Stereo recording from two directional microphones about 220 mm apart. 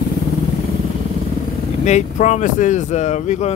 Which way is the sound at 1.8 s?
30° left (ahead or behind).